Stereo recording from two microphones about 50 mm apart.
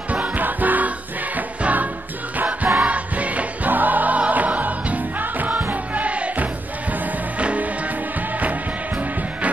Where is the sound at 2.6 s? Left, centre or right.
Centre.